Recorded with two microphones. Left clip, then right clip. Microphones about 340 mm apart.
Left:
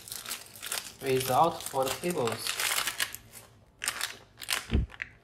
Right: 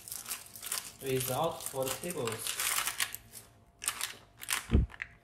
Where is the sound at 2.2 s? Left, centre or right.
Centre.